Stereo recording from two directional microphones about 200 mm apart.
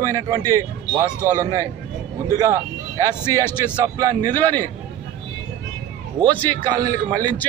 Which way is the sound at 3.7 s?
20° right (ahead or behind).